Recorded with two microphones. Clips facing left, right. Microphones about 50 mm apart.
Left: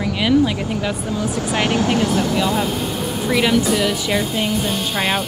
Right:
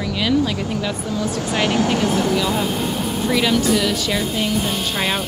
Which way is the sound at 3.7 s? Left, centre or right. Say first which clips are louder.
Even; centre.